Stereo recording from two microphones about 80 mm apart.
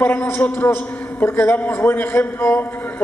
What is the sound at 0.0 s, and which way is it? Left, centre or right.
A man's voice, left.